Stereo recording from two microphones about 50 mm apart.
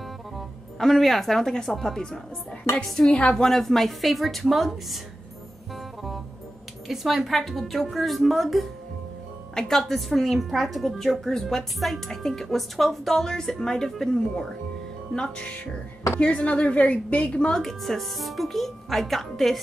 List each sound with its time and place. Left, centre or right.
0.7 s a woman's voice: centre
6.9 s a woman's voice: centre
15.1 s a woman's voice: centre
17.6 s a woman's voice: centre